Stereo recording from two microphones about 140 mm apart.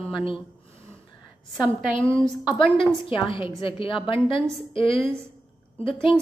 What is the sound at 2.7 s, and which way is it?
A woman's voice, 40° left (ahead or behind).